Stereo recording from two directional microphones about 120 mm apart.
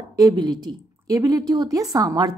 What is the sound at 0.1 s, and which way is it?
A woman's voice, 30° right (ahead or behind).